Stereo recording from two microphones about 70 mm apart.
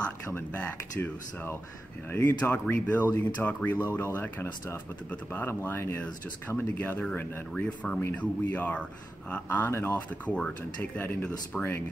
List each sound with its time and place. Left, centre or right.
0.5 s speech: left
9.7 s speech: left
9.9 s speech: left